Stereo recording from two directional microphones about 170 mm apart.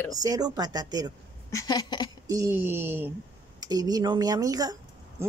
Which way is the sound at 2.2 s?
20° right (ahead or behind).